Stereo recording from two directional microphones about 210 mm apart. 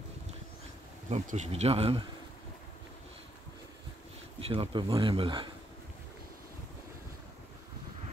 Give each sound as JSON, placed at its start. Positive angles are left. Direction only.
{"t": 1.1, "sound": "speech", "side_deg": -35}
{"t": 4.4, "sound": "speech", "side_deg": -25}